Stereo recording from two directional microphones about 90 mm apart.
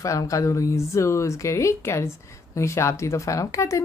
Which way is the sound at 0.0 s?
40° left (ahead or behind).